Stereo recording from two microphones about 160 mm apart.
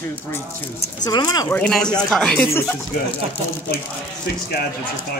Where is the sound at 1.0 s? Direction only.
25° left (ahead or behind).